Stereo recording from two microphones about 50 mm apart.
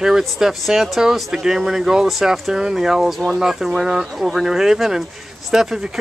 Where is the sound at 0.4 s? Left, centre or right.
Centre.